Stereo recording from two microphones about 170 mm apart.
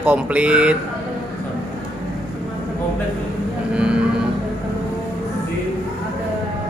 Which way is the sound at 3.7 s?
5° right (ahead or behind).